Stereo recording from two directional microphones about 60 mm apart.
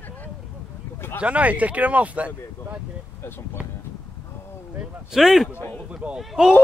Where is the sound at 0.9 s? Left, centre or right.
Left.